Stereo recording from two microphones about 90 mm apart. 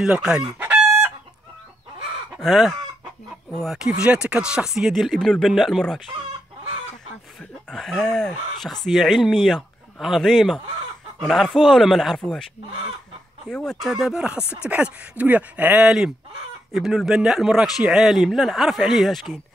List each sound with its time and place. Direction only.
0.0 s chicken: 10° right (ahead or behind)
2.3 s chicken: centre (ahead or behind)
3.4 s speech: 5° left (ahead or behind)
3.7 s speech: 10° right (ahead or behind)
7.7 s speech: 5° left (ahead or behind)
13.5 s speech: 5° left (ahead or behind); by 15.9 s 15° right (ahead or behind)
16.7 s speech: 5° right (ahead or behind)